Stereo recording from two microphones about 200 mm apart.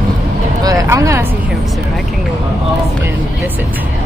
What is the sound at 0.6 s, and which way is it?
Speech, 15° right (ahead or behind).